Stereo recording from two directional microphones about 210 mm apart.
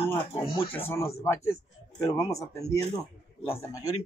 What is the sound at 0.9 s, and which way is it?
Speech, 10° left (ahead or behind).